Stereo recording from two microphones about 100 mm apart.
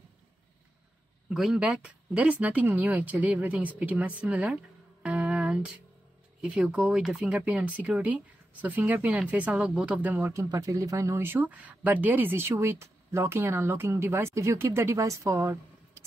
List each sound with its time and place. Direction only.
1.3 s speech: 5° right (ahead or behind)
5.0 s music: 10° right (ahead or behind)
6.4 s speech: 10° right (ahead or behind)
10.1 s speech: 30° right (ahead or behind)